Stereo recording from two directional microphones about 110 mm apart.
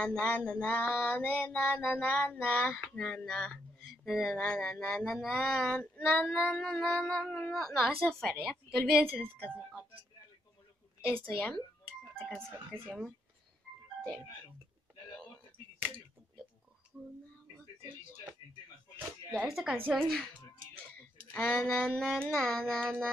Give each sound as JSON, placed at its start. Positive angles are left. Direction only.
{"t": 0.0, "sound": "female singing", "side_deg": 10}
{"t": 3.0, "sound": "speech", "side_deg": 5}
{"t": 4.4, "sound": "female singing", "side_deg": 10}
{"t": 8.6, "sound": "child singing", "side_deg": 0}
{"t": 11.1, "sound": "female singing", "side_deg": 10}
{"t": 12.2, "sound": "speech", "side_deg": -25}
{"t": 16.9, "sound": "a sound", "side_deg": -10}
{"t": 19.4, "sound": "child singing", "side_deg": -5}
{"t": 21.3, "sound": "child singing", "side_deg": 5}